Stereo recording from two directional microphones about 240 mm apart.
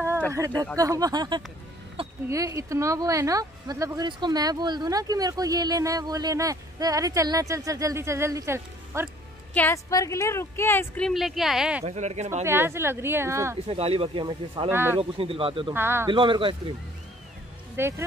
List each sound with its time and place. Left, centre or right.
0.7 s speech: centre
9.5 s speech: centre
11.8 s speech: right
12.4 s speech: centre
13.7 s speech: right
15.0 s speech: right
15.7 s speech: centre
16.1 s speech: right
17.7 s speech: centre